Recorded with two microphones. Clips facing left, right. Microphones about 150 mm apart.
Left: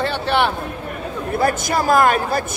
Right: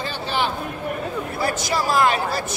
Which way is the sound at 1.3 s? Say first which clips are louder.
Left 6 dB; 50° left (ahead or behind).